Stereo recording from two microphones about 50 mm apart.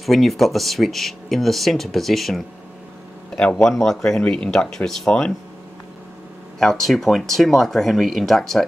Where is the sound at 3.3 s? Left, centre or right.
Centre.